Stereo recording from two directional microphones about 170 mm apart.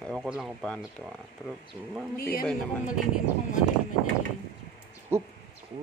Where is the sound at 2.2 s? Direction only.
60° left (ahead or behind).